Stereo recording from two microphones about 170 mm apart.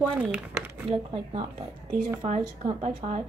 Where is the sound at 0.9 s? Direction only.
35° right (ahead or behind).